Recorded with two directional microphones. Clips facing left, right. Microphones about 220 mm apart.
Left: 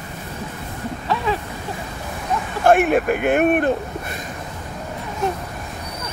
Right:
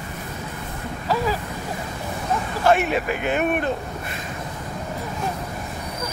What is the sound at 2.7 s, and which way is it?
Speech, 50° left (ahead or behind).